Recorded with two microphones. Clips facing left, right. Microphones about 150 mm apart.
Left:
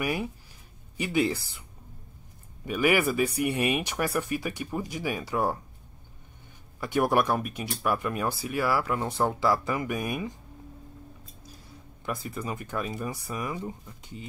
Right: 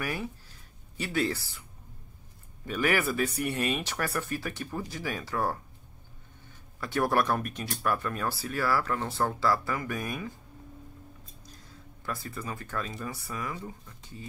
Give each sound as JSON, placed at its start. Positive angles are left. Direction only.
{"t": 0.0, "sound": "speech", "side_deg": 10}
{"t": 2.6, "sound": "speech", "side_deg": 10}
{"t": 6.8, "sound": "speech", "side_deg": 15}
{"t": 12.0, "sound": "speech", "side_deg": 15}